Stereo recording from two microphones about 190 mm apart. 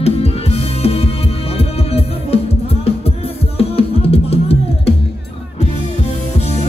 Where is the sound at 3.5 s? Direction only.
30° left (ahead or behind).